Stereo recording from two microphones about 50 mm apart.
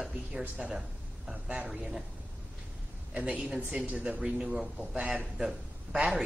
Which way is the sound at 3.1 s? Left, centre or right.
Right.